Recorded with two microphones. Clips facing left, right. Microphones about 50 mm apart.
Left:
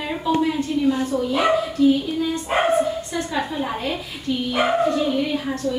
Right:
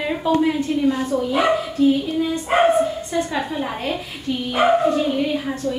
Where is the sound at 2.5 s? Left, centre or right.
Centre.